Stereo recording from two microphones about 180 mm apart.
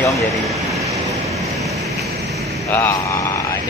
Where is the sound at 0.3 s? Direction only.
Centre (ahead or behind).